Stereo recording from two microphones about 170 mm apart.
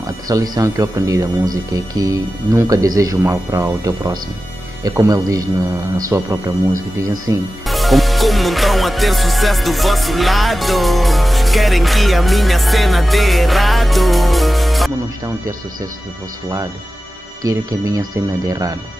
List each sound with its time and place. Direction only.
0.0 s speech: 20° right (ahead or behind)
7.6 s music: centre (ahead or behind)
17.4 s speech: 20° right (ahead or behind)